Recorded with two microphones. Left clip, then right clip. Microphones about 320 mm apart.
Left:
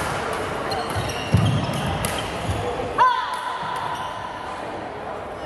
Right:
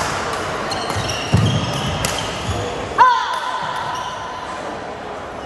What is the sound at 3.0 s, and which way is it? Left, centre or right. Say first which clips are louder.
Music: right 6 dB; right.